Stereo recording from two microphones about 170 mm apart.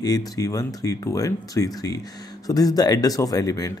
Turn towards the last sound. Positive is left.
turn(degrees=20)  # may be behind; listen again after turning